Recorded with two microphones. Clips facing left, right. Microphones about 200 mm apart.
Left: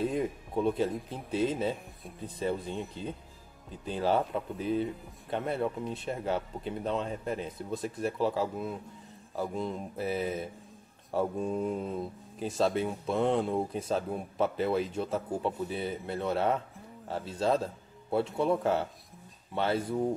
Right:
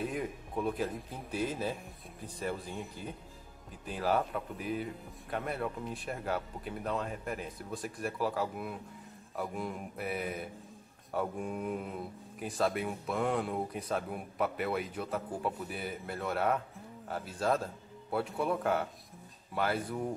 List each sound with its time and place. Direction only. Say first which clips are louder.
0.0 s speech: left 5 dB; 25° left (ahead or behind)